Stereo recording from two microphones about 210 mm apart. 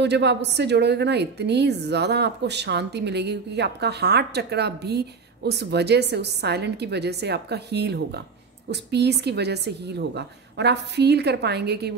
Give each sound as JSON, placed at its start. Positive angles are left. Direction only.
{"t": 0.0, "sound": "a woman's voice", "side_deg": -55}